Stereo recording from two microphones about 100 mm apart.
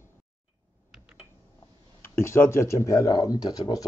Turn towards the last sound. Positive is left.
turn(degrees=40)  # may be behind; listen again after turning